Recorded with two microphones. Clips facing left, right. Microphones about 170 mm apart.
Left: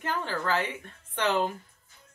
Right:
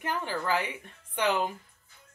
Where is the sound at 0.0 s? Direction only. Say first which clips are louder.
Left 1 dB; 15° right (ahead or behind).